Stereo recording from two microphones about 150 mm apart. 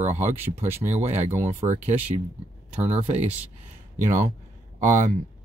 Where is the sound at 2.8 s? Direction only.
45° right (ahead or behind).